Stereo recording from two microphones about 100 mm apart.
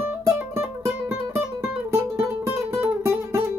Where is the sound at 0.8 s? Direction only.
35° right (ahead or behind).